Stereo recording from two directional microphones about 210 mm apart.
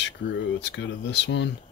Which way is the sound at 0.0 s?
60° left (ahead or behind).